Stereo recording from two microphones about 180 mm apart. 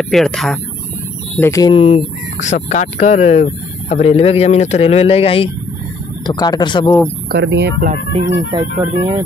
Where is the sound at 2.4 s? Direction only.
40° left (ahead or behind); by 6.9 s 25° left (ahead or behind).